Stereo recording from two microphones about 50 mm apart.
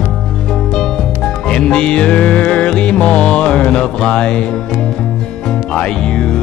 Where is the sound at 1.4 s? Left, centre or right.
Left.